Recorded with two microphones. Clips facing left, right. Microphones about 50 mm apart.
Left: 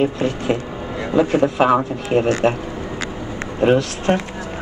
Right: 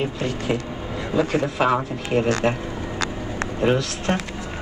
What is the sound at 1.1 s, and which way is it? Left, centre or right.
Speech, left.